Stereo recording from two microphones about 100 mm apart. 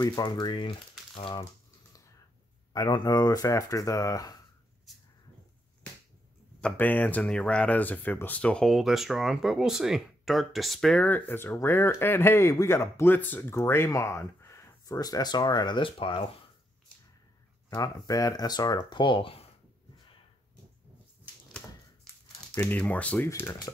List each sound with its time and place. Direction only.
0.0 s speech: 40° left (ahead or behind)
2.7 s speech: 45° left (ahead or behind)
6.6 s speech: 15° left (ahead or behind)
11.1 s speech: 20° left (ahead or behind); by 16.3 s 60° left (ahead or behind)
17.6 s speech: 35° left (ahead or behind)
18.9 s speech: 55° left (ahead or behind)
21.5 s typewriter: 10° left (ahead or behind)
22.6 s speech: 15° left (ahead or behind)
23.2 s speech: 25° left (ahead or behind)